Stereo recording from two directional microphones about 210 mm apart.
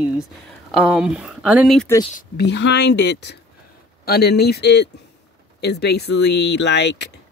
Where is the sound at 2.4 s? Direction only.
55° left (ahead or behind).